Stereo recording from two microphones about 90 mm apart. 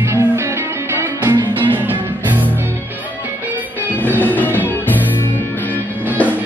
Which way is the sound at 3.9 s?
20° left (ahead or behind).